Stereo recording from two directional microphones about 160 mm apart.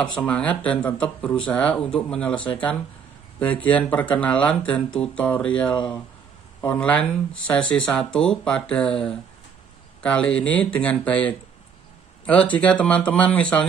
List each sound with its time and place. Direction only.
0.0 s speech: 5° left (ahead or behind)